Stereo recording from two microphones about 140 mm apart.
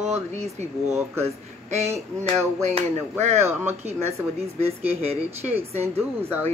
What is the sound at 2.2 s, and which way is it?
Speech, 50° right (ahead or behind).